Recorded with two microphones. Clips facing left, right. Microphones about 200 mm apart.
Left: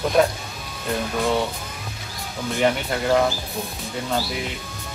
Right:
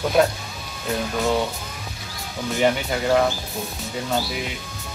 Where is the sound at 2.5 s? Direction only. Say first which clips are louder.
Right 1 dB; centre (ahead or behind).